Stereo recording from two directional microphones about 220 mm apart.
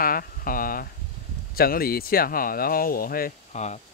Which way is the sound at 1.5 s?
40° left (ahead or behind).